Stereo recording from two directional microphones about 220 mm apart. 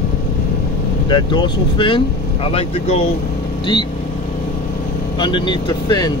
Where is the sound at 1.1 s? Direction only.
20° left (ahead or behind).